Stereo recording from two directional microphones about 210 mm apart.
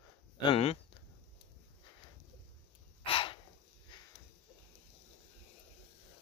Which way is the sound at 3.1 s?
25° left (ahead or behind).